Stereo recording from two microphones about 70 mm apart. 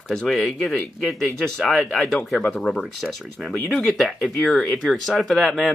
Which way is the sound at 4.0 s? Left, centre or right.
Centre.